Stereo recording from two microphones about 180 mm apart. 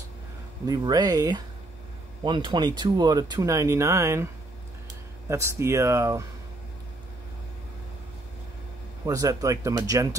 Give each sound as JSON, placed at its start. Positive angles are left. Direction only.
{"t": 0.7, "sound": "speech", "side_deg": -20}
{"t": 5.3, "sound": "speech", "side_deg": -15}
{"t": 9.0, "sound": "speech", "side_deg": -20}